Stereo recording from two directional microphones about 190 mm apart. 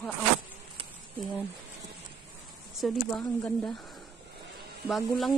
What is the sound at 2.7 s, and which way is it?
Speech, centre (ahead or behind).